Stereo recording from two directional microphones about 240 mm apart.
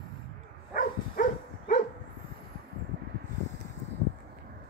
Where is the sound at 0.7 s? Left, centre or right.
Left.